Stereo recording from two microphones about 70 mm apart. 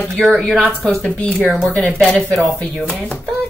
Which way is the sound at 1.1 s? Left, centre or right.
Centre.